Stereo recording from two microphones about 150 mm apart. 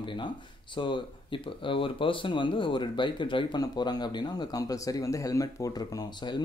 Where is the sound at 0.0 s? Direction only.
35° left (ahead or behind).